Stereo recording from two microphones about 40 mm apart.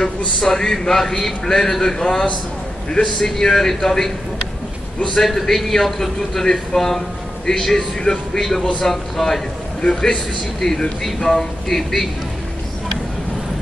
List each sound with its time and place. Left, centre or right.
0.4 s a man's voice: centre
5.2 s a man's voice: centre
9.8 s a man's voice: centre